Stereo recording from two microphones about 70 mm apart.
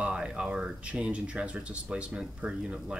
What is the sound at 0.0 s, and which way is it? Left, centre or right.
Speech, centre.